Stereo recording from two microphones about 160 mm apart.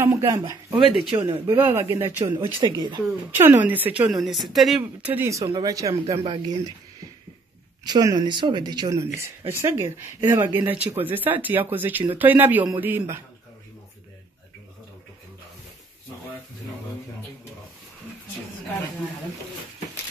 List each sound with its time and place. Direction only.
0.0 s speech: 15° right (ahead or behind)
2.4 s speech: 30° right (ahead or behind)
3.3 s speech: 10° right (ahead or behind); by 6.6 s 30° right (ahead or behind)
7.8 s speech: 25° right (ahead or behind)